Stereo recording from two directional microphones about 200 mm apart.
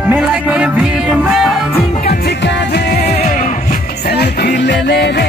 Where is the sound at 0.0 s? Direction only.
5° right (ahead or behind).